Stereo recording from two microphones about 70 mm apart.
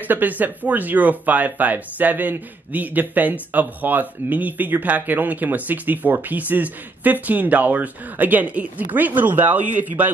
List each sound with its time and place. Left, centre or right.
0.1 s speech: right